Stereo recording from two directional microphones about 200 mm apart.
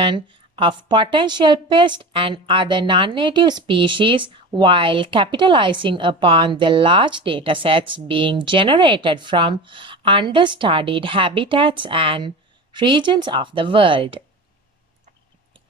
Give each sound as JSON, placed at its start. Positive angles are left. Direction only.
{"t": 0.0, "sound": "a woman's voice", "side_deg": -25}